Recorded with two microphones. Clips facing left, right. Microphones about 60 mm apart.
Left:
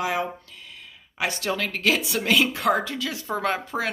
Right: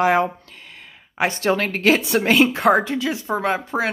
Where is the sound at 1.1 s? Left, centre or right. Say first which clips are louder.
Right 7 dB; right.